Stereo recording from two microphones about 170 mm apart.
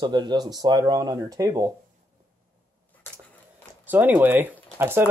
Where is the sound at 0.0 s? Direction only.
25° right (ahead or behind).